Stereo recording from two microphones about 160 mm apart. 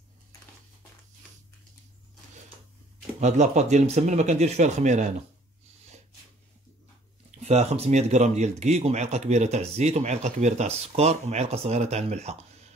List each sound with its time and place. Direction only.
3.2 s speech: 45° right (ahead or behind)
7.2 s speech: 40° right (ahead or behind)